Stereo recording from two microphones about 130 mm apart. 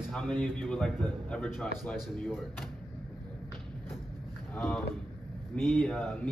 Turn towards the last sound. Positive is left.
turn(degrees=10)  # may be behind; listen again after turning